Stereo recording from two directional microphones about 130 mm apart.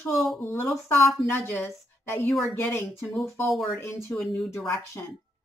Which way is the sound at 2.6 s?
20° left (ahead or behind).